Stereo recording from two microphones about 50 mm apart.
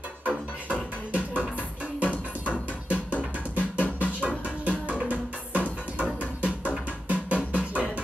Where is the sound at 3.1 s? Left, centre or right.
Right.